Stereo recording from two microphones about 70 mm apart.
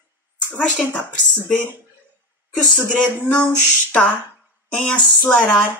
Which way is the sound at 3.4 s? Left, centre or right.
Centre.